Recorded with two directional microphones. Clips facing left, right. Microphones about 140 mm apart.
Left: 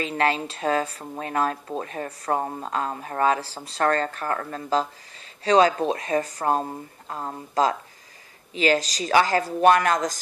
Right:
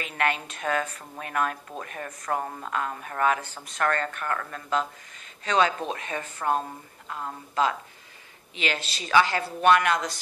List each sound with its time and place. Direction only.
0.0 s speech: 30° left (ahead or behind)